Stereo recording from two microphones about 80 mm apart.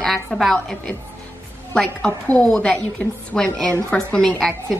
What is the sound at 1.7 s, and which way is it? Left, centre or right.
A woman's voice, centre.